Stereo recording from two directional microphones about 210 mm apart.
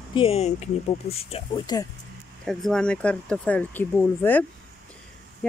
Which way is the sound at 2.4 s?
Centre (ahead or behind).